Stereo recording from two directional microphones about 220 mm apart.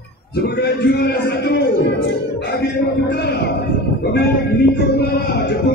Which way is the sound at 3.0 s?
50° left (ahead or behind).